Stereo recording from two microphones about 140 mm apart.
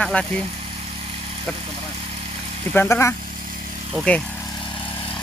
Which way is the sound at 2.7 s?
15° left (ahead or behind).